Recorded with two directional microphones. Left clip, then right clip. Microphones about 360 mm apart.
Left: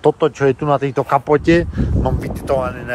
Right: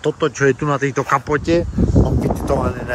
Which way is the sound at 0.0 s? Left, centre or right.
Centre.